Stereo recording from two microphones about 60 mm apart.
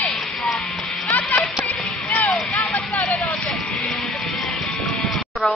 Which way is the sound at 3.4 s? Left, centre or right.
Centre.